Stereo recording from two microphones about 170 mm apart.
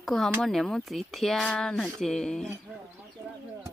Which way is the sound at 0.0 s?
Centre (ahead or behind).